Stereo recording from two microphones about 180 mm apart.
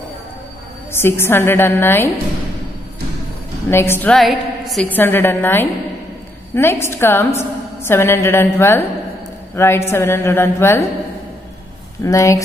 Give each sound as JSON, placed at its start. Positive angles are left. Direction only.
{"t": 0.9, "sound": "a woman's voice", "side_deg": 15}
{"t": 3.7, "sound": "a woman's voice", "side_deg": 15}
{"t": 4.9, "sound": "a woman's voice", "side_deg": 10}
{"t": 12.0, "sound": "a woman's voice", "side_deg": 15}